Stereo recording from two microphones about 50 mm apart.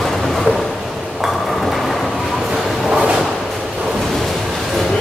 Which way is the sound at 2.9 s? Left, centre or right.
Centre.